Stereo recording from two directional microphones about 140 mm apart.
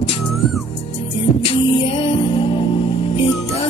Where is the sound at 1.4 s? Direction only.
40° left (ahead or behind).